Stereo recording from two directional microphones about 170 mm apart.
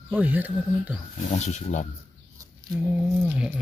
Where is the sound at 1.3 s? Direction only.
40° left (ahead or behind).